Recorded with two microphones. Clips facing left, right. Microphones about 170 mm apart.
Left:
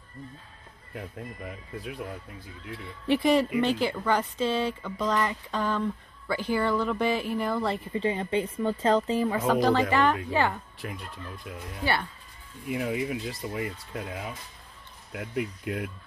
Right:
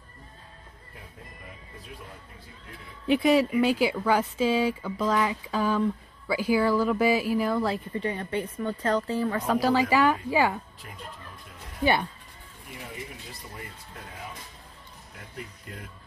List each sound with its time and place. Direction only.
3.1 s speech: centre (ahead or behind)
7.9 s speech: 20° left (ahead or behind)
9.5 s speech: 5° right (ahead or behind)
10.8 s speech: 90° left
11.8 s speech: 15° right (ahead or behind)
12.6 s speech: 90° left
15.1 s speech: 90° left